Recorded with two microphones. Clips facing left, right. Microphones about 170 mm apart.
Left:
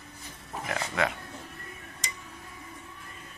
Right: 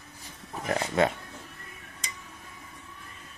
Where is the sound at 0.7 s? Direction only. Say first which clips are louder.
Right 5 dB; 35° right (ahead or behind).